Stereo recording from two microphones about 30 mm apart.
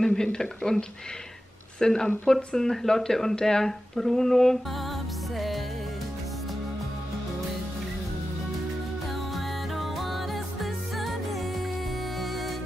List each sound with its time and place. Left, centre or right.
0.0 s speech: left
9.8 s music: centre